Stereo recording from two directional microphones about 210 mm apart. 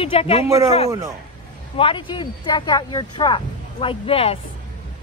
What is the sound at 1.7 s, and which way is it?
Speech, 25° left (ahead or behind).